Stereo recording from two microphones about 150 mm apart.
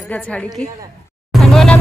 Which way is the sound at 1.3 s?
Centre (ahead or behind).